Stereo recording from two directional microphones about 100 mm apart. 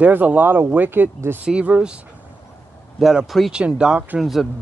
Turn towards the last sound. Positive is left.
turn(degrees=-10)  # may be behind; listen again after turning